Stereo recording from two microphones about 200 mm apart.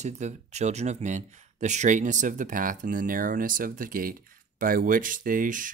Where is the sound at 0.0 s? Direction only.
35° right (ahead or behind).